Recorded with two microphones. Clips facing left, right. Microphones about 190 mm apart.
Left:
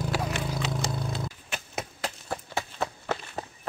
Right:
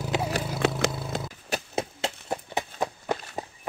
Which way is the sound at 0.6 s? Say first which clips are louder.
Right 6 dB; 90° right.